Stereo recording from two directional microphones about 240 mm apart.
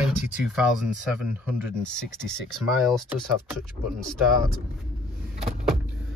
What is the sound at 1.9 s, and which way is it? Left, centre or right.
Speech, centre.